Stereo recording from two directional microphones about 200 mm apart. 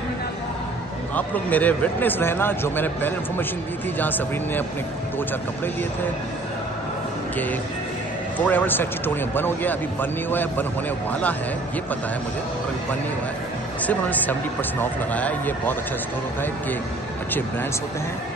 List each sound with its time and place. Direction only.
1.1 s speech: 10° left (ahead or behind)
8.4 s speech: 10° left (ahead or behind)
13.8 s speech: 10° left (ahead or behind)